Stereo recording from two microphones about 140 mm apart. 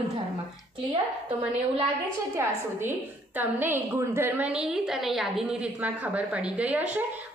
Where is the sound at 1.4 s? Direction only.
10° right (ahead or behind).